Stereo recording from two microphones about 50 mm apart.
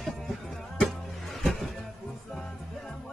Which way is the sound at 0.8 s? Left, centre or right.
Centre.